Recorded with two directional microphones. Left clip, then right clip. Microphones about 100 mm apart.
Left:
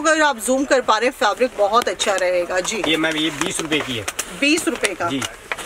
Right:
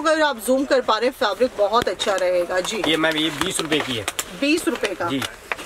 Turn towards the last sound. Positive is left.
turn(degrees=5)  # may be behind; listen again after turning